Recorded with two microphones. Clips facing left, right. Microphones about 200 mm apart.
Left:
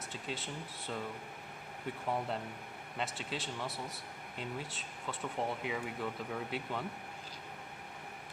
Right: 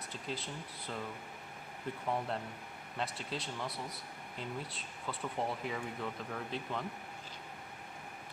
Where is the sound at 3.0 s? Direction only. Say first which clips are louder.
Even; centre (ahead or behind).